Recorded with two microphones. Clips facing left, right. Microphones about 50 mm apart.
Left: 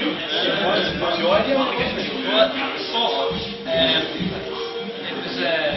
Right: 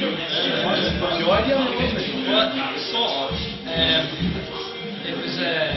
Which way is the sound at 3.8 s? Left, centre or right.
Centre.